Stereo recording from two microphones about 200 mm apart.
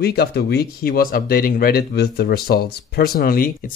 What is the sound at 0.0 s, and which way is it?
Speech, 50° left (ahead or behind).